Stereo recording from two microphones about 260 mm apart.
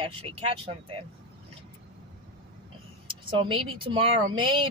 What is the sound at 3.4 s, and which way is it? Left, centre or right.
Speech, centre.